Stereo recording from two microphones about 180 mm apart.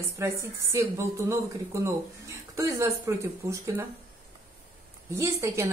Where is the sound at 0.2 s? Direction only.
15° right (ahead or behind).